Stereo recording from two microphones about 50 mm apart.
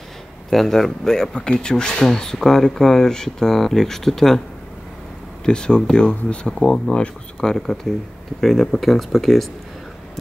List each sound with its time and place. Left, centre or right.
0.5 s speech: centre
5.4 s speech: centre